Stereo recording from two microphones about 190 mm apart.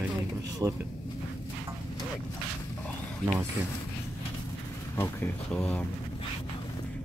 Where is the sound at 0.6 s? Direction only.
15° right (ahead or behind).